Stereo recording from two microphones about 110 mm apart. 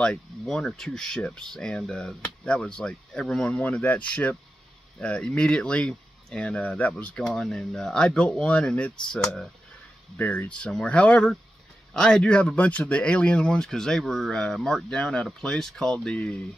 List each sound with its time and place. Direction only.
0.0 s speech: 5° left (ahead or behind)